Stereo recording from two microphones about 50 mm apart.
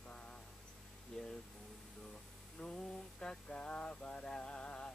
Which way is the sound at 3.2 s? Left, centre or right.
Left.